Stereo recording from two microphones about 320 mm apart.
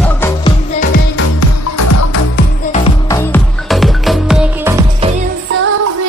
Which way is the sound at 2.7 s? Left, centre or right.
Centre.